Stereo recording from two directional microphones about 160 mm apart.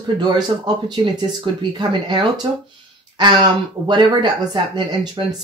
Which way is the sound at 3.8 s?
25° right (ahead or behind).